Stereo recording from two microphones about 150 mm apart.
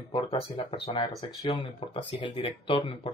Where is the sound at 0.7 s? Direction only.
35° left (ahead or behind).